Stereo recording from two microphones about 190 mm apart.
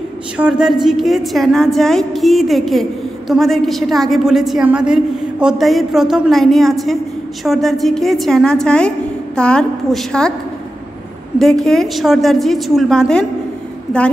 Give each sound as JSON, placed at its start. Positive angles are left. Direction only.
{"t": 0.4, "sound": "a woman's voice", "side_deg": -5}
{"t": 11.3, "sound": "a woman's voice", "side_deg": 0}